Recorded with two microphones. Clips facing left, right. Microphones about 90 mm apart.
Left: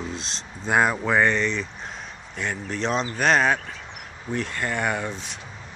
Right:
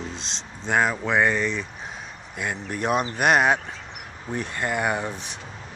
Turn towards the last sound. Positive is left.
turn(degrees=-15)  # may be behind; listen again after turning